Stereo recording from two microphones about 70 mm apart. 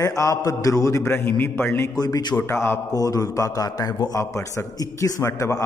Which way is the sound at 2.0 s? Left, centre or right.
Left.